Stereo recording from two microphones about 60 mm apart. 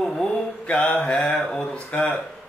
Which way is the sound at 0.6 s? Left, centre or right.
Left.